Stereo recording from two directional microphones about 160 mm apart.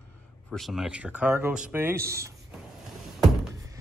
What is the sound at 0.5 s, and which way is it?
Speech, centre (ahead or behind).